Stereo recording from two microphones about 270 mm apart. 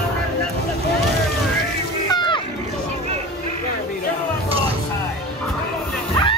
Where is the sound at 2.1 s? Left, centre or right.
Centre.